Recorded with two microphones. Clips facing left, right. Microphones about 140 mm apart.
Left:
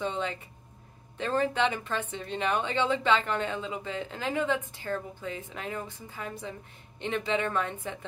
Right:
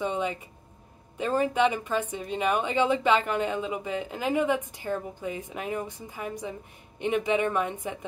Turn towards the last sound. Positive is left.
turn(degrees=-15)  # may be behind; listen again after turning